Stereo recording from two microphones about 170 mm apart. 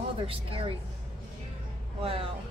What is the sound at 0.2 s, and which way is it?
Speech, 35° right (ahead or behind).